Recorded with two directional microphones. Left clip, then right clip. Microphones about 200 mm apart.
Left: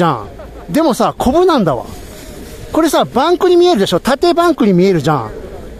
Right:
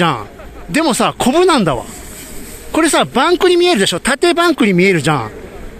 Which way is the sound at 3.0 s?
5° left (ahead or behind).